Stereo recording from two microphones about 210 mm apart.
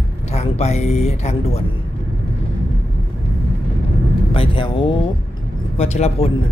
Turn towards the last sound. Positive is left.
turn(degrees=30)  # may be behind; listen again after turning